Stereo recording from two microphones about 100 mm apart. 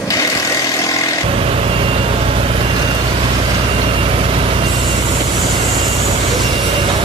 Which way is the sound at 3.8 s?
70° right (ahead or behind).